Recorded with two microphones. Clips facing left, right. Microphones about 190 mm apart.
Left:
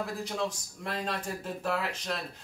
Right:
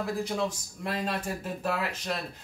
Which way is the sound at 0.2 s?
5° right (ahead or behind).